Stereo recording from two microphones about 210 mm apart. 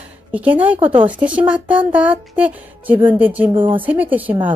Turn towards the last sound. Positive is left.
turn(degrees=-10)  # may be behind; listen again after turning